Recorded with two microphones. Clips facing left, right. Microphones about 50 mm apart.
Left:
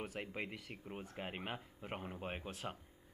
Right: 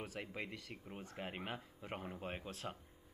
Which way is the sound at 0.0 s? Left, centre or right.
Centre.